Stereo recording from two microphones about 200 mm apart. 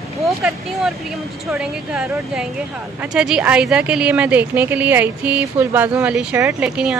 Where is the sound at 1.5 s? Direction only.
5° right (ahead or behind).